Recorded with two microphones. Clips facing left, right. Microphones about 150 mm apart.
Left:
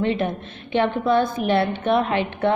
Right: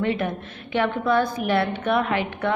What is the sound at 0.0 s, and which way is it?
A woman's voice, 25° left (ahead or behind).